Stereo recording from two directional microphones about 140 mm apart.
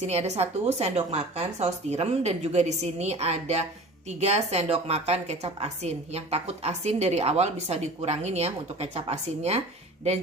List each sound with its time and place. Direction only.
0.0 s a woman's voice: 50° right (ahead or behind)